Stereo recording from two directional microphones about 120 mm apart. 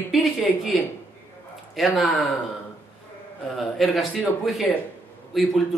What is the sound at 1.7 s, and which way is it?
Speech, centre (ahead or behind).